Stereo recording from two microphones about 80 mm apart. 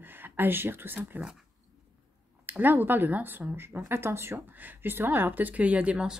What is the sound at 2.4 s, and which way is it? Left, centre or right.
Speech, right.